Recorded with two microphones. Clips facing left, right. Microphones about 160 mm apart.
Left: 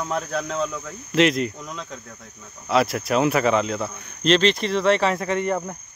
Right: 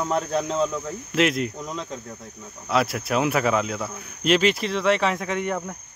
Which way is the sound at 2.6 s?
Centre (ahead or behind).